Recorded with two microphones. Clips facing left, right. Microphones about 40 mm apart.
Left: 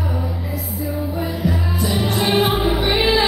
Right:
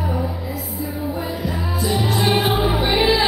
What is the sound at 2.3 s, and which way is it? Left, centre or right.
Music, left.